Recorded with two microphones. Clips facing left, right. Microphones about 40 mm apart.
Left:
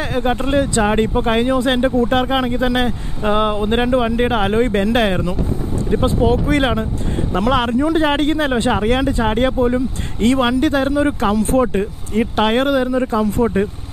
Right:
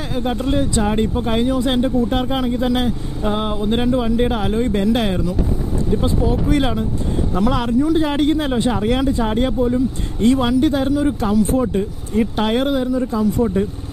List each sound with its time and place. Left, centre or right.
0.0 s speech: left